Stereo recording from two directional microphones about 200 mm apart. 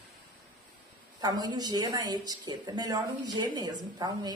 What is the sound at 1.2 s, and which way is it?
A woman's voice, 20° right (ahead or behind).